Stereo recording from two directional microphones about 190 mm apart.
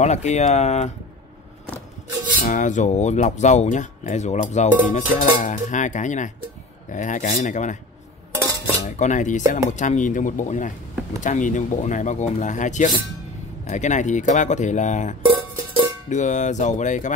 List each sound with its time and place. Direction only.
0.0 s speech: 35° left (ahead or behind)
2.4 s speech: 40° left (ahead or behind)
8.8 s speech: 40° left (ahead or behind)
15.2 s music: 25° right (ahead or behind)
16.1 s speech: 40° left (ahead or behind)